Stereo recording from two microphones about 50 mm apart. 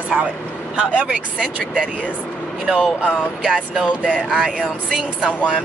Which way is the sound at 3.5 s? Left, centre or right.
Right.